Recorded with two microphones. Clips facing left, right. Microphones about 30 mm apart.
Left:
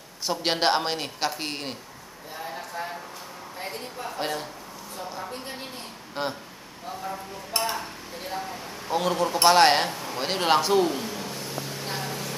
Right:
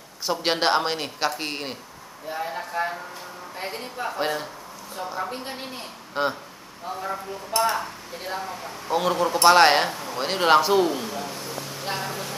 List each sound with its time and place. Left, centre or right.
0.3 s speech: centre
2.3 s a woman's voice: right
6.2 s speech: centre
7.7 s a woman's voice: centre
11.8 s a sound: centre